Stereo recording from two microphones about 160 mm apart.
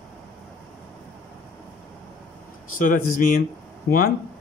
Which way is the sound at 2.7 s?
60° left (ahead or behind).